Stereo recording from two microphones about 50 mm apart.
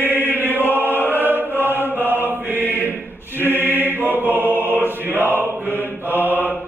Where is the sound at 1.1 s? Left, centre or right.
Right.